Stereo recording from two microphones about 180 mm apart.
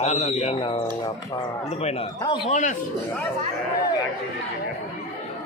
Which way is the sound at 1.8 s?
35° left (ahead or behind).